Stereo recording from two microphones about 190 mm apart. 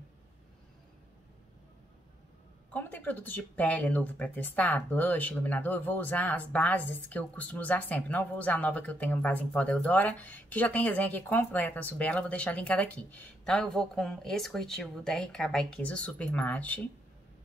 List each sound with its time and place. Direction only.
2.7 s speech: 10° left (ahead or behind)